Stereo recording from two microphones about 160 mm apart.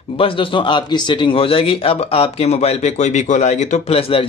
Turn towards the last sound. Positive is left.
turn(degrees=35)  # may be behind; listen again after turning